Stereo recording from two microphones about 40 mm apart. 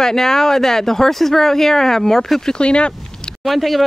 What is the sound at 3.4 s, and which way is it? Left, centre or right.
Speech, centre.